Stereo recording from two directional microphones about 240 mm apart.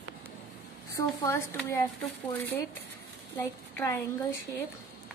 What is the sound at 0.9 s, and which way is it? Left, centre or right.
Speech, centre.